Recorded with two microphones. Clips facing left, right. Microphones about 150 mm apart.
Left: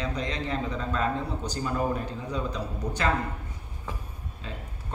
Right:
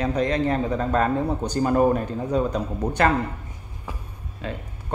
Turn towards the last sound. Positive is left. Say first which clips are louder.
# right 8 dB
turn(degrees=-65)  # may be behind; listen again after turning